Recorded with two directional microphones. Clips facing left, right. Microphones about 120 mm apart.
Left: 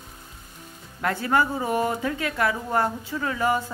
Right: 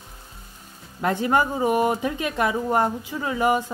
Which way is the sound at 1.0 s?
20° right (ahead or behind).